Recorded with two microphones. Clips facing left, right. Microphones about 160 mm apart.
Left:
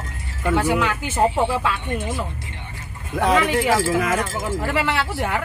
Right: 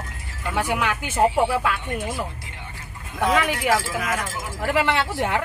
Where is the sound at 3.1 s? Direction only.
30° left (ahead or behind).